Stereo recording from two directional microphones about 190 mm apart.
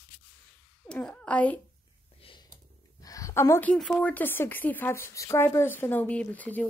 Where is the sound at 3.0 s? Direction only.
20° left (ahead or behind).